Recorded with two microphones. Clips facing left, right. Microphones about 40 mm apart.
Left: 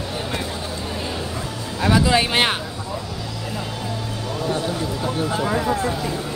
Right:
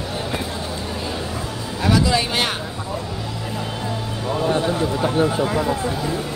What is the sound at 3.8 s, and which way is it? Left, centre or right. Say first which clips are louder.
Music: right 2 dB; right.